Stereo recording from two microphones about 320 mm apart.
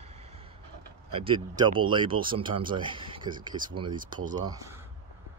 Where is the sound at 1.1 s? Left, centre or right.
Centre.